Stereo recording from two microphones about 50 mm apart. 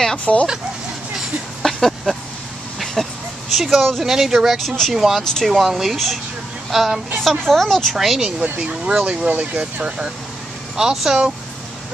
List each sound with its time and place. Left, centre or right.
0.2 s speech: left
1.6 s a sound: centre
3.5 s speech: centre
4.6 s speech: centre
4.9 s speech: centre
5.2 s speech: centre
5.5 s speech: centre
8.5 s speech: centre